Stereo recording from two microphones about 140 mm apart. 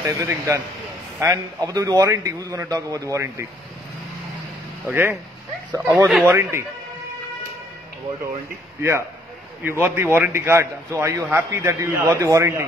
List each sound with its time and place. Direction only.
0.0 s a man's voice: 20° right (ahead or behind)
4.8 s a man's voice: 15° right (ahead or behind)
9.6 s a man's voice: 15° right (ahead or behind)